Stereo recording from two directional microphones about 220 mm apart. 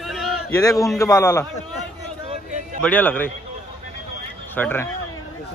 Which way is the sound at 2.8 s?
10° left (ahead or behind).